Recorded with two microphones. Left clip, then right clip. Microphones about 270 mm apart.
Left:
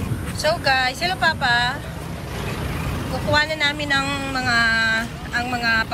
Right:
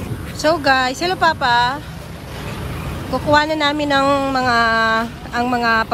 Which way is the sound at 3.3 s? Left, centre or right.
Centre.